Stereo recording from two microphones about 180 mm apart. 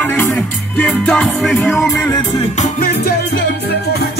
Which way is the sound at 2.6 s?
55° left (ahead or behind).